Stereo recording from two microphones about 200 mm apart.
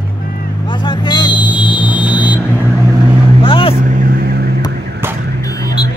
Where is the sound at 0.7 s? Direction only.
20° left (ahead or behind).